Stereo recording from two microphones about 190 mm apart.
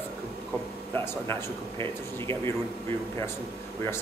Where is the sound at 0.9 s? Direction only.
15° left (ahead or behind).